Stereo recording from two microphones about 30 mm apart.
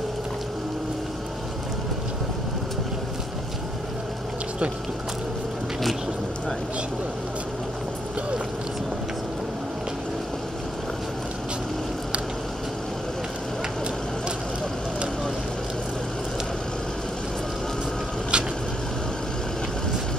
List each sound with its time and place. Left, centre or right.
18.3 s vehicle: right